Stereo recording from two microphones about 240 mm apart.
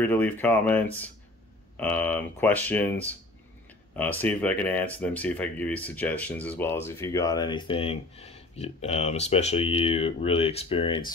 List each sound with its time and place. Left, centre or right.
0.0 s speech: centre